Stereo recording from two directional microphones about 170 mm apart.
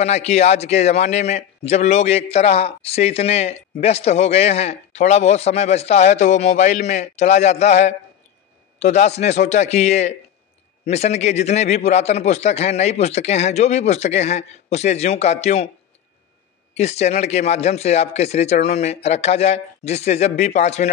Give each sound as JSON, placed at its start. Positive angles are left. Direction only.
{"t": 0.0, "sound": "a man's voice", "side_deg": 40}
{"t": 16.7, "sound": "a man's voice", "side_deg": 40}